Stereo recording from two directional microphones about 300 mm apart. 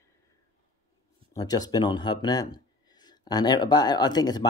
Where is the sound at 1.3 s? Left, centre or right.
Centre.